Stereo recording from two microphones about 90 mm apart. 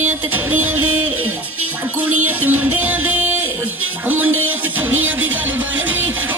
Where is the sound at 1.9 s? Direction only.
20° right (ahead or behind).